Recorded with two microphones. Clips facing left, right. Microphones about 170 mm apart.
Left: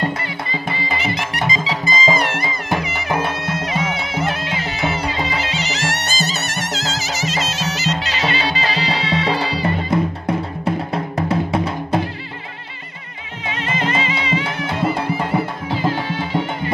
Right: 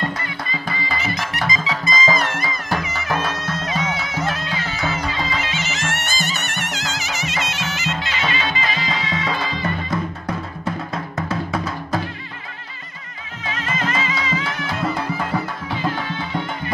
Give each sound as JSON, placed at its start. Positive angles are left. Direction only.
{"t": 0.0, "sound": "music", "side_deg": 25}
{"t": 13.5, "sound": "music", "side_deg": 25}